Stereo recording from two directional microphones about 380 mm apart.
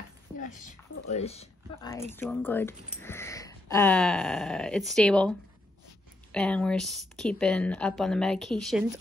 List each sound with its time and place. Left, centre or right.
0.4 s speech: centre
6.3 s speech: centre